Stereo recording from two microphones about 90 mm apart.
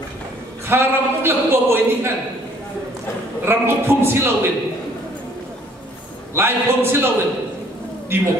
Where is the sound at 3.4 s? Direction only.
25° right (ahead or behind).